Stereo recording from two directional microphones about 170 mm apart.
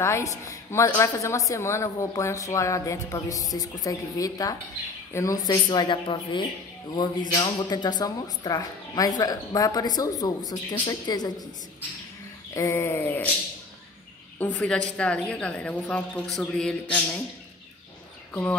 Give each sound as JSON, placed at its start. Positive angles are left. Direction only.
{"t": 0.0, "sound": "a woman's voice", "side_deg": 15}
{"t": 12.5, "sound": "a woman's voice", "side_deg": 15}
{"t": 14.4, "sound": "a woman's voice", "side_deg": 10}